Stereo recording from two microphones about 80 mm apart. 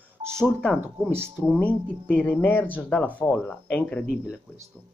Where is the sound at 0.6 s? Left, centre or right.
Centre.